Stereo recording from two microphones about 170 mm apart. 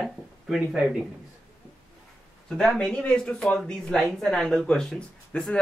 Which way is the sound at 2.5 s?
5° left (ahead or behind).